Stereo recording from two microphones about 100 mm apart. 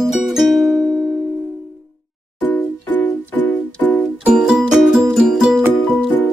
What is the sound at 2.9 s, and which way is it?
Music, 15° left (ahead or behind).